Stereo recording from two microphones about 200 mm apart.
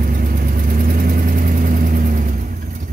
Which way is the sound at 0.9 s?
45° right (ahead or behind).